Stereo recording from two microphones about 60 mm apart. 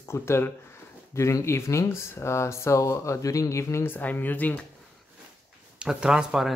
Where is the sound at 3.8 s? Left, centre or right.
Left.